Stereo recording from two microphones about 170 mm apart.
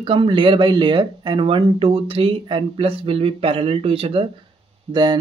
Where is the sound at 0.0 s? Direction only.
30° right (ahead or behind).